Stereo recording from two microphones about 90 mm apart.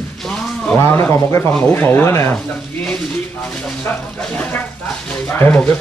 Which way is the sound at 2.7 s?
15° left (ahead or behind).